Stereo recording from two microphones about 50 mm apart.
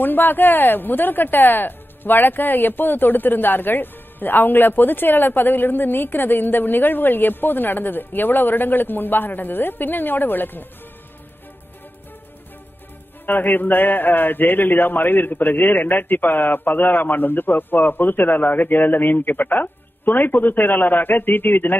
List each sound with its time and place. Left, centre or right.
0.0 s speech: left
13.2 s speech: left